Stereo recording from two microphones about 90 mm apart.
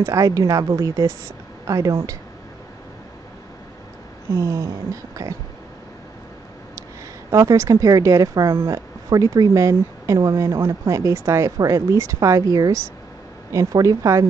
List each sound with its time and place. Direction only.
0.0 s speech: 40° right (ahead or behind)
4.3 s speech: 30° right (ahead or behind)
7.2 s speech: 35° right (ahead or behind)